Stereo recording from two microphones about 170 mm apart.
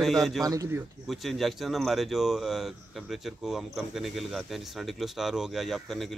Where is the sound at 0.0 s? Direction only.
Centre (ahead or behind).